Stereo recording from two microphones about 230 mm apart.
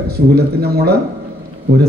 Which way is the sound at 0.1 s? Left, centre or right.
Right.